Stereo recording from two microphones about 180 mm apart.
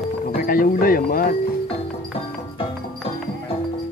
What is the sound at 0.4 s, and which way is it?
Speech, 55° left (ahead or behind).